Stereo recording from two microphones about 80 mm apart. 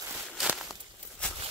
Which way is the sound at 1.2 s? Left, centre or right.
Centre.